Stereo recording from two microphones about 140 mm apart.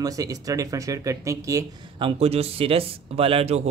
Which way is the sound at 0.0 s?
25° right (ahead or behind).